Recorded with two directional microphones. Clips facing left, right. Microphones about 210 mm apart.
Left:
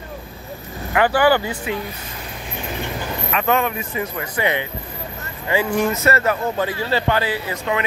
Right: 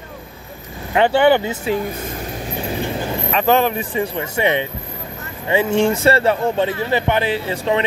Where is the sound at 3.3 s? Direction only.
30° right (ahead or behind).